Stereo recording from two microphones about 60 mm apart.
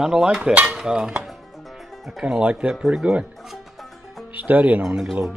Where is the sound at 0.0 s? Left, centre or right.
Centre.